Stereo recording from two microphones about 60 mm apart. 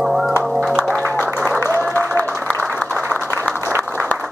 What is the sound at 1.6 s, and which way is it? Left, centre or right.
Applause, left.